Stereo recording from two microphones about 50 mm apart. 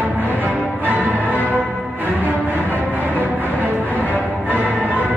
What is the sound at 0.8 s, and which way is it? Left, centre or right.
Music, right.